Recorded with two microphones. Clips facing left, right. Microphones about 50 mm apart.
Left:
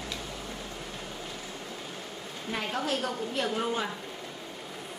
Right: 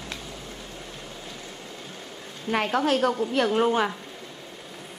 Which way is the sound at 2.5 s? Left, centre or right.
Right.